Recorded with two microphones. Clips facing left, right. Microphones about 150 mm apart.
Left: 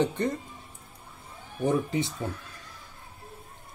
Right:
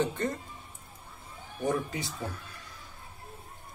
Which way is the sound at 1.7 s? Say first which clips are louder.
Left 5 dB; 20° left (ahead or behind).